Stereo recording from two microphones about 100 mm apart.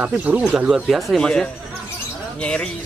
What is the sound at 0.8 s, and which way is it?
Speech, centre (ahead or behind).